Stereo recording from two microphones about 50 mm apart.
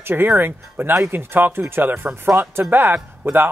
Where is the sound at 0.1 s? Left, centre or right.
Right.